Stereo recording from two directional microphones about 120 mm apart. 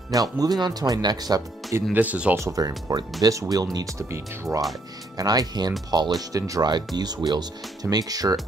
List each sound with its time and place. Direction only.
0.1 s speech: 30° right (ahead or behind)
2.0 s speech: 10° right (ahead or behind)
2.3 s speech: 25° right (ahead or behind)